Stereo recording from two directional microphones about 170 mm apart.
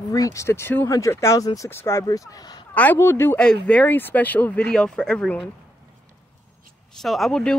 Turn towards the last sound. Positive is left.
turn(degrees=5)  # may be behind; listen again after turning